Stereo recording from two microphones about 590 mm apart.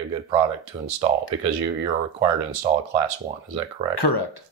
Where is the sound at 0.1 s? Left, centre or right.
Right.